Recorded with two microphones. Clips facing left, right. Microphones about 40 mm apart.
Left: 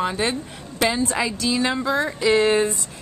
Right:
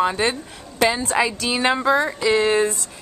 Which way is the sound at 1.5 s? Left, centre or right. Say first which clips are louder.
Even; right.